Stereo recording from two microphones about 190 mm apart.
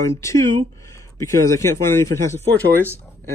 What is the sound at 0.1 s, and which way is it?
Speech, 15° left (ahead or behind).